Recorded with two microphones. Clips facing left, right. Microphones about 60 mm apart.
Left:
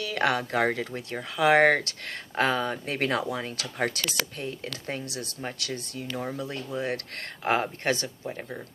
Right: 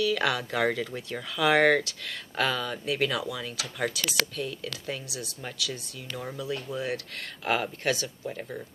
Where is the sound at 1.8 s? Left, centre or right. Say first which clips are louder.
Left 1 dB; left.